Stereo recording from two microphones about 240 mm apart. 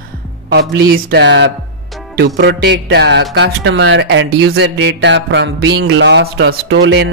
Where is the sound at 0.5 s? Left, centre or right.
Right.